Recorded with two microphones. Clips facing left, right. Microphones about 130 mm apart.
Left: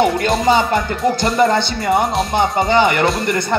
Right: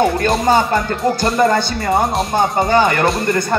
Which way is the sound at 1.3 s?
25° left (ahead or behind).